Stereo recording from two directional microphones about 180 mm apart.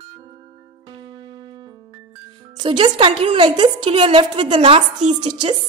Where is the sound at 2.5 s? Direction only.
25° right (ahead or behind).